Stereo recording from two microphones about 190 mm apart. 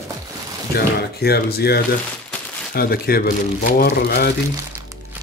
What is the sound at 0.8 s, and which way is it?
Speech, 55° left (ahead or behind).